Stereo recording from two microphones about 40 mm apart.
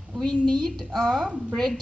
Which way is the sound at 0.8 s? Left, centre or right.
Centre.